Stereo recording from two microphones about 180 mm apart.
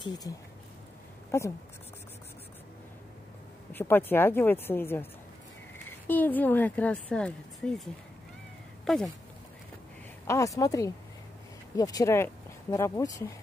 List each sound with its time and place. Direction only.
0.0 s speech: 25° left (ahead or behind)
1.3 s speech: 15° left (ahead or behind)
3.7 s a woman's voice: 10° left (ahead or behind)
10.2 s speech: 20° left (ahead or behind)